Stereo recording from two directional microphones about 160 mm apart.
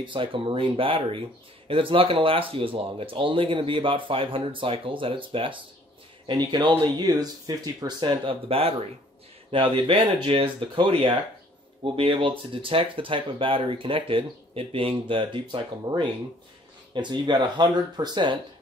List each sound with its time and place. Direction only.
0.0 s speech: 30° right (ahead or behind)